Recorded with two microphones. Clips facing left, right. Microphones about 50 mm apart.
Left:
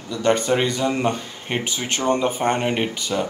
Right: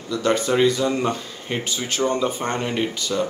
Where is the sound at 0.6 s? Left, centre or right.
Left.